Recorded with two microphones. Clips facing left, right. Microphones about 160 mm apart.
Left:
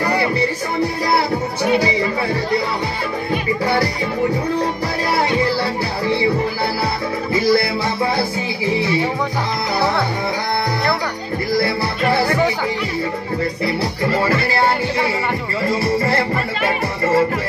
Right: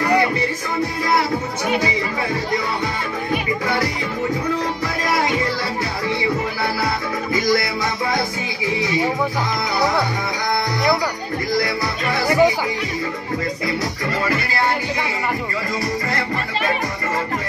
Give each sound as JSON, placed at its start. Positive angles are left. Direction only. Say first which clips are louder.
{"t": 1.1, "sound": "music", "louder": "left 1 dB", "side_deg": 35}
{"t": 3.6, "sound": "music", "louder": "left 5 dB", "side_deg": 35}
{"t": 5.1, "sound": "music", "louder": "left 3 dB", "side_deg": 35}
{"t": 7.3, "sound": "music", "louder": "left 4 dB", "side_deg": 30}
{"t": 11.5, "sound": "music", "louder": "left 3 dB", "side_deg": 30}
{"t": 13.7, "sound": "music", "louder": "left 4 dB", "side_deg": 30}
{"t": 15.7, "sound": "music", "louder": "left 7 dB", "side_deg": 30}